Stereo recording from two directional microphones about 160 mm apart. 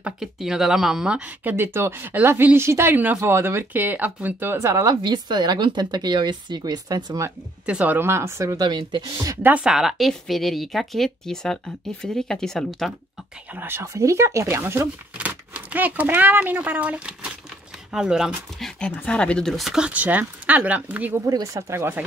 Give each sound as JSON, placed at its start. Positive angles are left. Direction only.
{"t": 0.0, "sound": "speech", "side_deg": -5}
{"t": 7.6, "sound": "speech", "side_deg": -10}
{"t": 9.5, "sound": "speech", "side_deg": -5}
{"t": 13.5, "sound": "speech", "side_deg": -15}
{"t": 18.8, "sound": "speech", "side_deg": 5}
{"t": 21.3, "sound": "speech", "side_deg": -20}